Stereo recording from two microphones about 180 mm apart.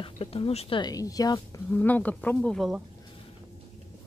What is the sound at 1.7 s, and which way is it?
Speech, 10° left (ahead or behind).